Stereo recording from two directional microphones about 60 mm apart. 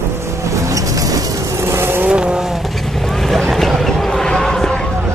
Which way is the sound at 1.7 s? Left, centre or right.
Right.